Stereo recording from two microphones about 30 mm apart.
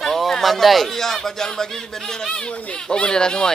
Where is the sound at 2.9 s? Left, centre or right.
Left.